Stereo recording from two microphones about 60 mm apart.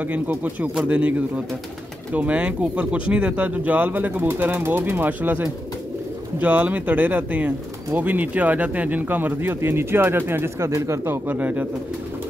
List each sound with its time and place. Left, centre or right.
0.0 s speech: right
2.1 s speech: right
10.7 s speech: right
11.1 s speech: right